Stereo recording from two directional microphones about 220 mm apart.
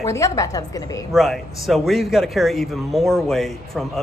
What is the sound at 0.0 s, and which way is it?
A woman's voice, 15° left (ahead or behind).